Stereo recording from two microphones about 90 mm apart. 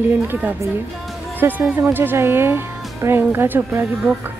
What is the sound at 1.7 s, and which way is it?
Speech, 20° right (ahead or behind).